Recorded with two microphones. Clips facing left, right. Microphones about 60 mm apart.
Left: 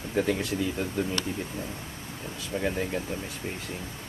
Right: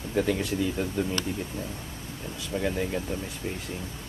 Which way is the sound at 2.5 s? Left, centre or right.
Centre.